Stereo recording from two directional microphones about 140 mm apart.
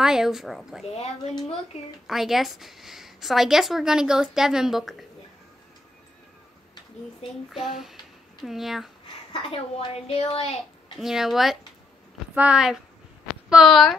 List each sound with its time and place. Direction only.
0.0 s a woman's voice: 5° right (ahead or behind)
0.9 s a woman's voice: 50° left (ahead or behind)
2.0 s a woman's voice: centre (ahead or behind)
7.4 s a woman's voice: centre (ahead or behind)
9.3 s a woman's voice: 40° left (ahead or behind)
11.0 s a woman's voice: centre (ahead or behind)